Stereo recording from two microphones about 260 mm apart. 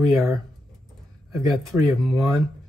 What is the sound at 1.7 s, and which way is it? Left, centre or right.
Speech, centre.